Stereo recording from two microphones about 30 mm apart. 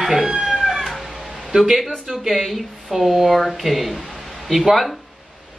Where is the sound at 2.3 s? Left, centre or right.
Centre.